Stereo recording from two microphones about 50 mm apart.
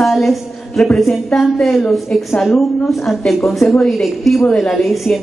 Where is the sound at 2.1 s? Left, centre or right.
Centre.